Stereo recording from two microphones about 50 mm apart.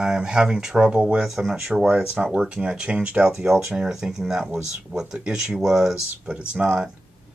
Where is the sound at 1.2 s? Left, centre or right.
Centre.